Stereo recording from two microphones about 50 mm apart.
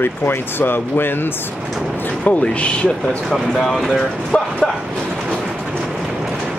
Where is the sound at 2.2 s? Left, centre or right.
Left.